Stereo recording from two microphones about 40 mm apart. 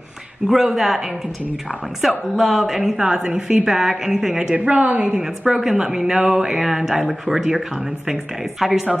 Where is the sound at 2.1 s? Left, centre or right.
Centre.